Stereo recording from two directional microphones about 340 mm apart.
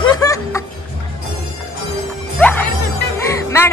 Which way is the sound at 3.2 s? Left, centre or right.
Centre.